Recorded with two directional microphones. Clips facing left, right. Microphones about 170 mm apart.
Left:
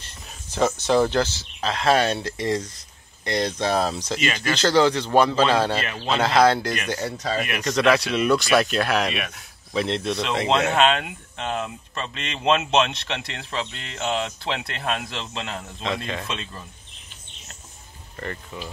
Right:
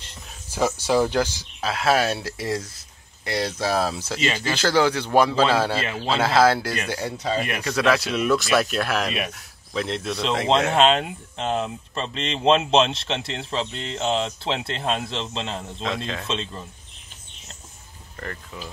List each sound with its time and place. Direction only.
0.0 s a man's voice: 10° right (ahead or behind)
7.1 s speech: 25° right (ahead or behind)
7.6 s speech: 5° right (ahead or behind)
10.8 s speech: 30° right (ahead or behind)
15.8 s speech: centre (ahead or behind)
16.3 s speech: 25° right (ahead or behind)
18.1 s speech: 5° left (ahead or behind)